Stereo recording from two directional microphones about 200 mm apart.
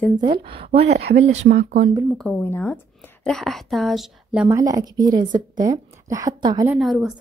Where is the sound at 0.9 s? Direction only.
60° right (ahead or behind).